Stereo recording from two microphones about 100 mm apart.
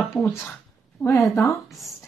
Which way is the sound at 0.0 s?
Centre (ahead or behind).